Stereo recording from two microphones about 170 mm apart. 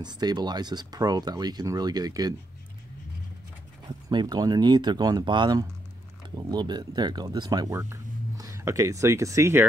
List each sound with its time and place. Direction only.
0.0 s speech: 25° right (ahead or behind)
4.1 s speech: 25° right (ahead or behind)